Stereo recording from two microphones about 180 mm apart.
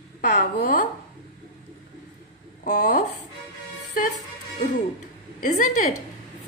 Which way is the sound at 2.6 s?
45° left (ahead or behind).